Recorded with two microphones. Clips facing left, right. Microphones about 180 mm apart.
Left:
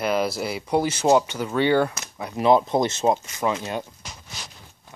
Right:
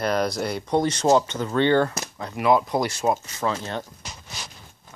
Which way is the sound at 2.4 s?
25° left (ahead or behind).